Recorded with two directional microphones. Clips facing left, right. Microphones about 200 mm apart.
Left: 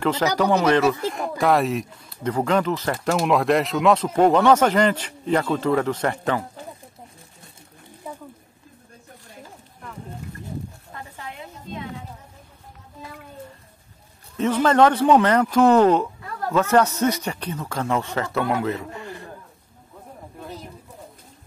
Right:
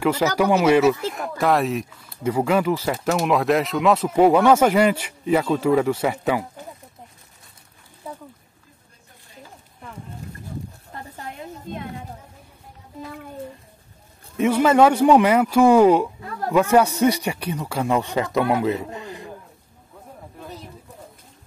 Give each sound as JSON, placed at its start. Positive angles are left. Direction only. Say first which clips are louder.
{"t": 0.0, "sound": "speech", "louder": "right 1 dB", "side_deg": -10}
{"t": 11.1, "sound": "a sound", "louder": "right 5 dB", "side_deg": -45}
{"t": 14.3, "sound": "speech", "louder": "right 2 dB", "side_deg": -10}